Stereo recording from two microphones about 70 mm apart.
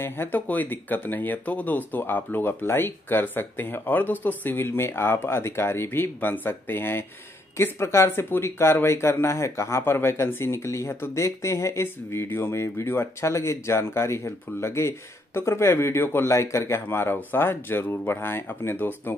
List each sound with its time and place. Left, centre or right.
0.0 s speech: left
16.3 s speech: left
16.8 s speech: left